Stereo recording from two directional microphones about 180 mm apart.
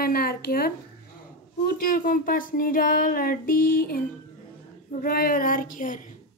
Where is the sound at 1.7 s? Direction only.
50° left (ahead or behind).